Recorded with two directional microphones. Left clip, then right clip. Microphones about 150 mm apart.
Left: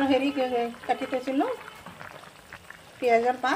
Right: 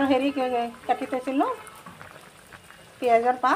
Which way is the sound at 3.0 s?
10° right (ahead or behind).